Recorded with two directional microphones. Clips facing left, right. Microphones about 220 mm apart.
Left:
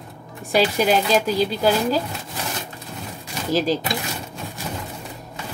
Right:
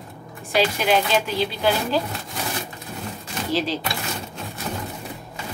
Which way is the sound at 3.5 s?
45° left (ahead or behind).